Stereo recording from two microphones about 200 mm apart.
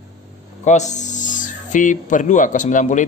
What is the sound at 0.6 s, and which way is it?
Speech, 35° left (ahead or behind).